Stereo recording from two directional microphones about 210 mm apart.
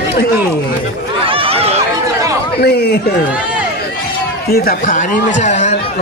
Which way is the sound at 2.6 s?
50° left (ahead or behind).